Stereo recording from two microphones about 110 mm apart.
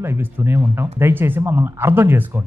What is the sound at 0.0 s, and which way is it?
Speech, 25° right (ahead or behind).